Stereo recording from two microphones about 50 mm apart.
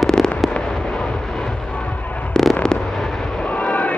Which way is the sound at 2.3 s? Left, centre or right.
Centre.